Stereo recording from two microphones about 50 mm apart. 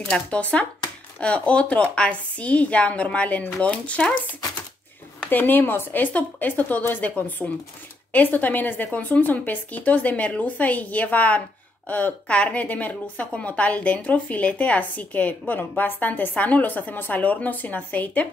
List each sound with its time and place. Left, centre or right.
0.0 s speech: centre
0.4 s a woman's voice: left
5.3 s a woman's voice: left
6.1 s a woman's voice: left